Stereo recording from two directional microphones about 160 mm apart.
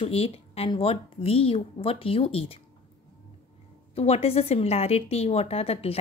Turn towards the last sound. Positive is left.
turn(degrees=40)  # may be behind; listen again after turning